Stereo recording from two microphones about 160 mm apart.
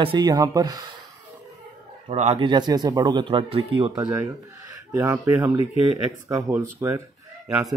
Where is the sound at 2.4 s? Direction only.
25° right (ahead or behind).